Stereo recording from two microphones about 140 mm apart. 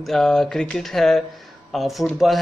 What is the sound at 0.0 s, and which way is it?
A man's voice, centre (ahead or behind).